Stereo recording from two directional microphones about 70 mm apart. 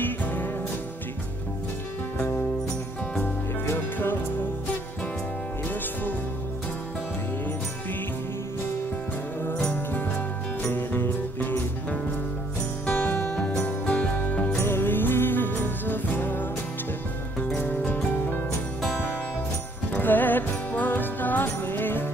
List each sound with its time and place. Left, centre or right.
0.0 s music: left
3.6 s music: left
10.6 s music: left
14.6 s music: left
17.6 s music: left
19.9 s music: left